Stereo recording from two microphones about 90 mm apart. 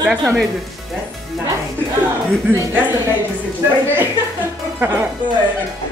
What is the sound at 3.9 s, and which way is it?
Music, 20° right (ahead or behind).